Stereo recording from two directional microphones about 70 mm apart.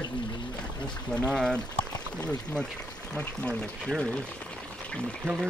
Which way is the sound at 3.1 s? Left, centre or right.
Centre.